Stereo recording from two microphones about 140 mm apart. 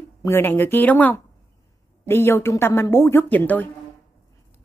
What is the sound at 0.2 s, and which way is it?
A woman's voice, 15° left (ahead or behind).